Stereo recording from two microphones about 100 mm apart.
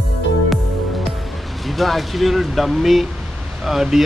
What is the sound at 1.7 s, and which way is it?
Speech, centre (ahead or behind).